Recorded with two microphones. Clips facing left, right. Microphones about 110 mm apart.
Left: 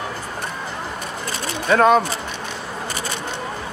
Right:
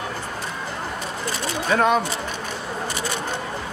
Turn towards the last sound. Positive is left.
turn(degrees=50)  # may be behind; listen again after turning